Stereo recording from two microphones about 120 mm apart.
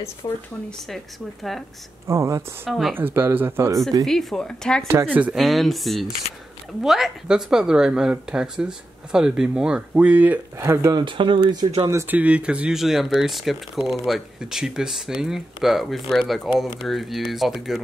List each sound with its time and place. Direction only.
0.2 s speech: 35° left (ahead or behind)
0.7 s speech: centre (ahead or behind)
2.0 s speech: 25° right (ahead or behind)
4.0 s speech: centre (ahead or behind)
5.0 s speech: 15° right (ahead or behind)
5.3 s speech: centre (ahead or behind); by 11.0 s 20° right (ahead or behind)
11.0 s speech: 45° right (ahead or behind)
11.9 s speech: 25° right (ahead or behind)
12.2 s speech: 10° right (ahead or behind)